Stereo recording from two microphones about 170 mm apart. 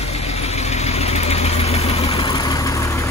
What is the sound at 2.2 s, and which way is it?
Vehicle, 25° left (ahead or behind).